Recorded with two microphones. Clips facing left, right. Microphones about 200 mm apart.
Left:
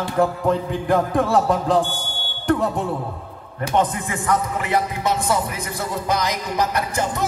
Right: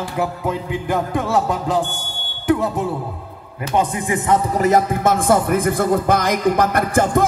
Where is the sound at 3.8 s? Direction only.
15° right (ahead or behind).